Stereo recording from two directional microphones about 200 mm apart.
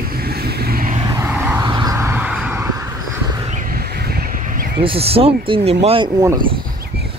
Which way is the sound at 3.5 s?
45° right (ahead or behind).